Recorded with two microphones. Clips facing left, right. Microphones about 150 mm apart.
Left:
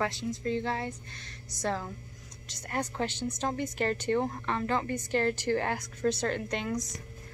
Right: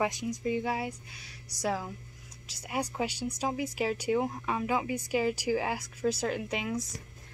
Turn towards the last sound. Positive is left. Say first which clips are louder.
# left 1 dB
turn(degrees=-5)  # may be behind; listen again after turning